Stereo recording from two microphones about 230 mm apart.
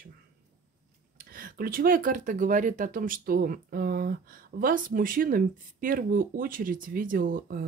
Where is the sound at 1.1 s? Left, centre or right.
Right.